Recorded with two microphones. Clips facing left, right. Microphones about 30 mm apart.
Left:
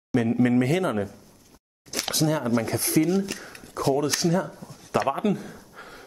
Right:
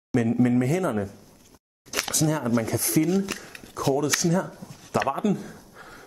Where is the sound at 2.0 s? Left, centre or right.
Left.